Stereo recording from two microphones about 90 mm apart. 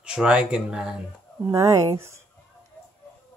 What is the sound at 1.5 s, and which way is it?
Speech, 35° right (ahead or behind).